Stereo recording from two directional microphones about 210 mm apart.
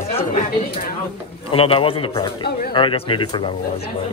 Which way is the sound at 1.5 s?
25° left (ahead or behind).